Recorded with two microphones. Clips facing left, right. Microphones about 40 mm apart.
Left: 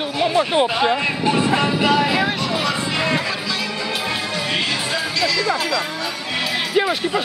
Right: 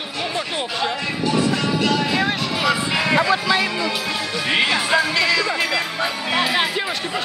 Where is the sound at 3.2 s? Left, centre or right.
Right.